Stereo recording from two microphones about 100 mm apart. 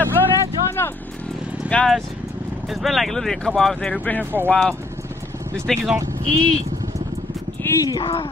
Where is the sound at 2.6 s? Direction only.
Centre (ahead or behind); by 4.3 s 15° left (ahead or behind).